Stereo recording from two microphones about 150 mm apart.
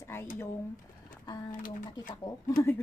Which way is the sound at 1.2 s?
30° left (ahead or behind).